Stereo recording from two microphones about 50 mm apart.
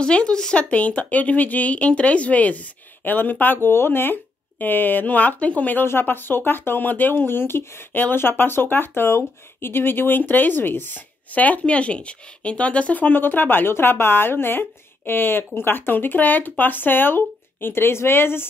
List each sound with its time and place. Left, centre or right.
0.0 s a woman's voice: centre; by 3.5 s left
3.6 s speech: left
11.3 s speech: left